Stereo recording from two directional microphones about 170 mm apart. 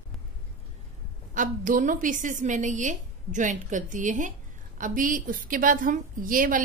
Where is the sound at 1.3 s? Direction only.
50° right (ahead or behind).